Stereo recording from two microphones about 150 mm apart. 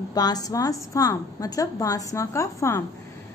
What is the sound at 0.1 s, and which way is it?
A woman's voice, 25° left (ahead or behind).